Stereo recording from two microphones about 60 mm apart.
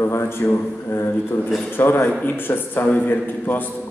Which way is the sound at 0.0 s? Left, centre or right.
Left.